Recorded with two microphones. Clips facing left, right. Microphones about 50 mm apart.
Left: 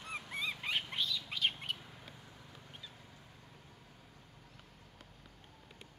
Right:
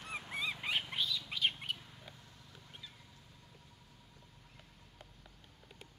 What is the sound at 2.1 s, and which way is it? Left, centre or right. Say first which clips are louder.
Vehicle: left 3 dB; left.